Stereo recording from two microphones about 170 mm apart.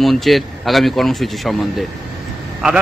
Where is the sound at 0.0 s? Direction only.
Centre (ahead or behind).